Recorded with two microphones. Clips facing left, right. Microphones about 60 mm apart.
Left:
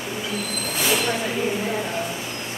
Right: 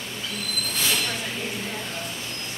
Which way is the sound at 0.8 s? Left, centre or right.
Centre.